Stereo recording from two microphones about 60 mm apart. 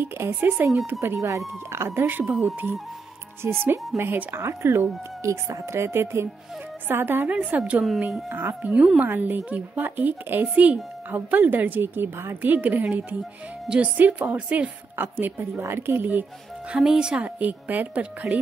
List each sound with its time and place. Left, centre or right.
0.0 s speech: right
1.1 s speech: right
1.7 s speech: right
2.0 s a woman's voice: right
3.4 s speech: right
4.4 s speech: right
5.2 s speech: right
7.5 s a woman's voice: right
8.3 s speech: right
12.4 s a woman's voice: right
16.7 s speech: centre
17.4 s a woman's voice: right